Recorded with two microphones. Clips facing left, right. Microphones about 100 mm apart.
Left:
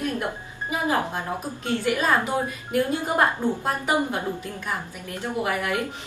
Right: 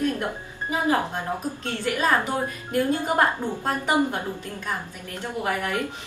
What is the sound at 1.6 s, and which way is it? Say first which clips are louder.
Speech: left 2 dB; 10° left (ahead or behind).